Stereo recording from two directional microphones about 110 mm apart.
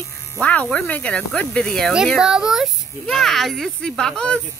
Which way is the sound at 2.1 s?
5° right (ahead or behind).